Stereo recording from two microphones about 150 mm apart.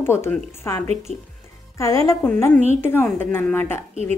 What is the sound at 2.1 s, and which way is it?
A woman's voice, 20° left (ahead or behind).